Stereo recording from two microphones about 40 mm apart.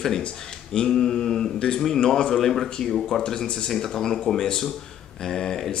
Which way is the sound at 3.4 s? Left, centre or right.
Left.